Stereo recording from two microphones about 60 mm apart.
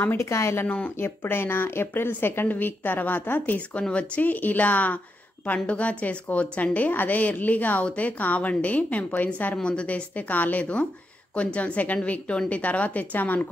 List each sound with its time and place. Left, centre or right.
0.0 s speech: left
0.3 s speech: left
0.7 s a woman's voice: left
0.9 s a woman's voice: left